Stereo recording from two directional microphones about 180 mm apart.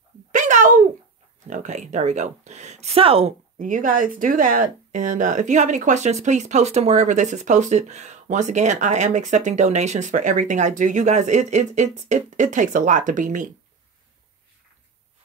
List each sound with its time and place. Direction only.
0.3 s a sound: 45° right (ahead or behind)
1.5 s speech: 40° right (ahead or behind)
3.5 s speech: 45° right (ahead or behind)